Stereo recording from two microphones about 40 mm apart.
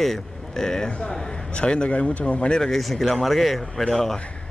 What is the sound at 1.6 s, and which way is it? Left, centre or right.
Speech, left.